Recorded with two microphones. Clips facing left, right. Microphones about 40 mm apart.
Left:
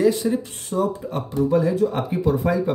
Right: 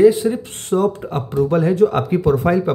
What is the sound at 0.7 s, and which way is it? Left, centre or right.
Speech, right.